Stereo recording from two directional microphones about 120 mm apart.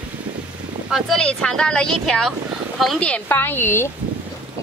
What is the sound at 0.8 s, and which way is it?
Speech, 5° left (ahead or behind).